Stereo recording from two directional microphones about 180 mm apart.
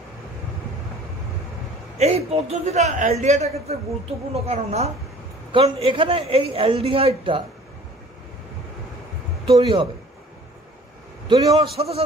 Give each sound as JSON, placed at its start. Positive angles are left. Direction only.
{"t": 2.0, "sound": "a man's voice", "side_deg": -35}
{"t": 9.5, "sound": "a man's voice", "side_deg": -30}
{"t": 11.2, "sound": "a man's voice", "side_deg": -35}